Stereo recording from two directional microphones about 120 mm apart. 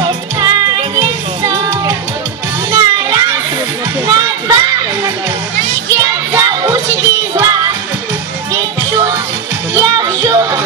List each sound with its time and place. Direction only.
0.0 s music: 35° right (ahead or behind)
4.1 s children playing: 30° right (ahead or behind)
5.9 s music: 25° right (ahead or behind)